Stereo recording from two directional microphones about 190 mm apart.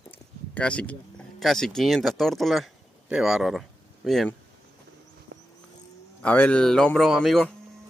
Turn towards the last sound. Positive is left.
turn(degrees=5)  # may be behind; listen again after turning